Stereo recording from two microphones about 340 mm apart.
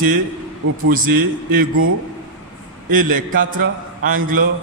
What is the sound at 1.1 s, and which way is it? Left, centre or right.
Speech, right.